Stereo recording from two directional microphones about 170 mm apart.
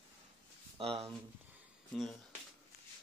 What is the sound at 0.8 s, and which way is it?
Speech, 35° right (ahead or behind).